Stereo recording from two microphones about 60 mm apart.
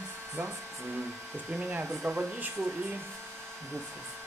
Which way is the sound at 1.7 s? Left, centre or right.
Right.